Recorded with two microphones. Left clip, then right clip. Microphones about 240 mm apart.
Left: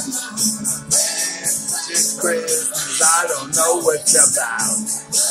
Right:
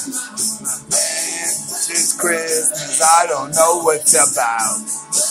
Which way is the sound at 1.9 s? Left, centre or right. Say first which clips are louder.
Right 1 dB; centre.